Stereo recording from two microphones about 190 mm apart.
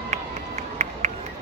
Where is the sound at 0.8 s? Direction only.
35° right (ahead or behind).